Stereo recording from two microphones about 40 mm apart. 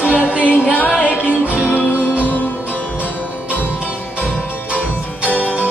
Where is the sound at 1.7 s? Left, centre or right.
Left.